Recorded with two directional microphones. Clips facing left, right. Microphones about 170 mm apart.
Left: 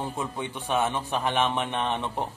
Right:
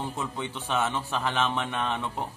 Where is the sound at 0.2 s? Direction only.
15° left (ahead or behind).